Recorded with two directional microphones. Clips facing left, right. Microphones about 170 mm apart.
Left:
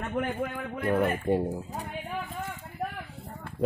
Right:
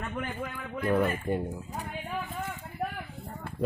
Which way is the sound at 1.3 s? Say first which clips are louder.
Left 4 dB; 30° left (ahead or behind).